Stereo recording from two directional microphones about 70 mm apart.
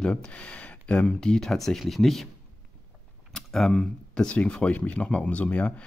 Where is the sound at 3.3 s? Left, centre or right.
Centre.